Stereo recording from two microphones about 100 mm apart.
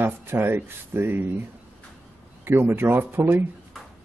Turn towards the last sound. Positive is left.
turn(degrees=-20)  # may be behind; listen again after turning